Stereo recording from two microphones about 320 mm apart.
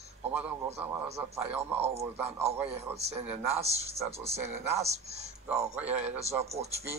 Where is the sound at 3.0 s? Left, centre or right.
Centre.